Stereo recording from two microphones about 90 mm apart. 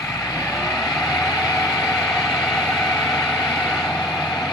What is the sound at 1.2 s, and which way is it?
Vehicle, 40° left (ahead or behind).